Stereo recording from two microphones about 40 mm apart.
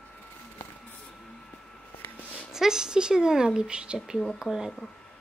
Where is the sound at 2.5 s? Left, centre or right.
Centre.